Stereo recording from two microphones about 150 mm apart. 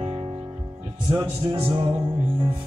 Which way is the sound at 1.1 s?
35° right (ahead or behind).